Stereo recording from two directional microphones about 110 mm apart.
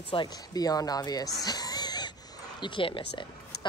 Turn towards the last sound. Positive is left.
turn(degrees=45)  # may be behind; listen again after turning